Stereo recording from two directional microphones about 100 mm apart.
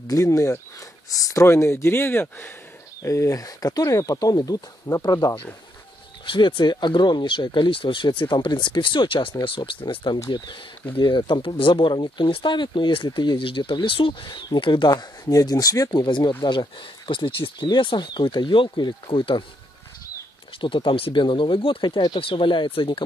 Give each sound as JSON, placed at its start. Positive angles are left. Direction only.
{"t": 0.1, "sound": "speech", "side_deg": 35}
{"t": 3.0, "sound": "speech", "side_deg": 30}
{"t": 6.2, "sound": "speech", "side_deg": 55}
{"t": 20.6, "sound": "speech", "side_deg": 60}